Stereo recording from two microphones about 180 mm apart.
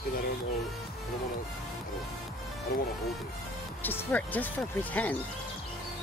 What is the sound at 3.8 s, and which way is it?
Speech, 10° left (ahead or behind).